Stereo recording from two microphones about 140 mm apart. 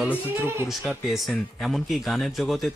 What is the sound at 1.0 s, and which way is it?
Speech, centre (ahead or behind).